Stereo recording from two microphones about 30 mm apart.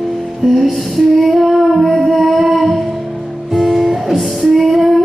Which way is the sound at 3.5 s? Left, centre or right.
Centre.